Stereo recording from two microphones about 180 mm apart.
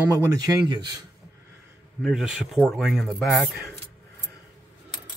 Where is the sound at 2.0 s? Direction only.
5° right (ahead or behind).